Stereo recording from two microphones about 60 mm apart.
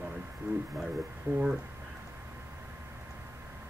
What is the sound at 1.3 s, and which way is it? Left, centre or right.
Speech, right.